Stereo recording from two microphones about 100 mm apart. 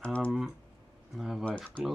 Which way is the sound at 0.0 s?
10° left (ahead or behind).